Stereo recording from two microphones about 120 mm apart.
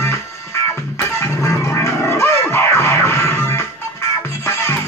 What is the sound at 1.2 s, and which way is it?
Music, 25° left (ahead or behind).